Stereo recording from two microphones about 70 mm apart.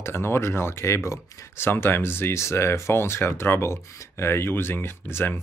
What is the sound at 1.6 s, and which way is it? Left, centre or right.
Speech, left.